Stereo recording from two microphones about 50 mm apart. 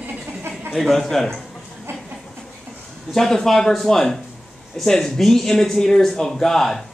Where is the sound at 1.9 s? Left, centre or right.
Right.